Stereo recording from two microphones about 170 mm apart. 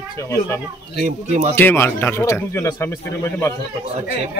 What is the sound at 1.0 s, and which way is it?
Speech, 45° right (ahead or behind).